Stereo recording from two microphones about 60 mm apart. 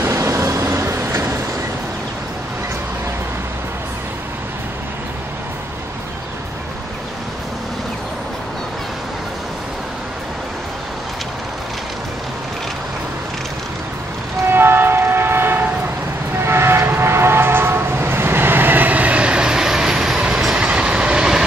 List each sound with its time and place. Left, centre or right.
0.1 s vehicle: right
14.5 s train: right; by 21.5 s centre